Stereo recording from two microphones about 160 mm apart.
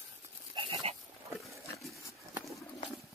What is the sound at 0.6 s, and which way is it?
Goat, 35° right (ahead or behind).